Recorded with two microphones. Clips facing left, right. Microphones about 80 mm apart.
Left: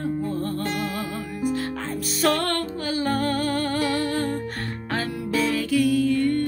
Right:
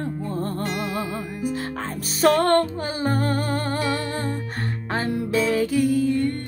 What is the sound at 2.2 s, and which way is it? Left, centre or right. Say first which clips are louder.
Music: right 6 dB; right.